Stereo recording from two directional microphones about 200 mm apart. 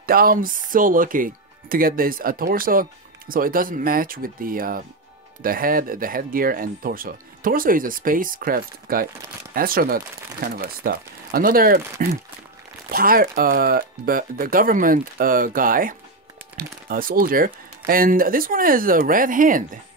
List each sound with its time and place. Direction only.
0.0 s speech: 45° right (ahead or behind)